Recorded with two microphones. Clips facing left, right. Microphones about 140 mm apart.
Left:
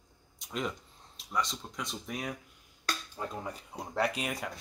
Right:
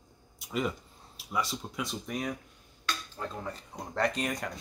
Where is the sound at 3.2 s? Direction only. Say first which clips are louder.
Even; 10° left (ahead or behind).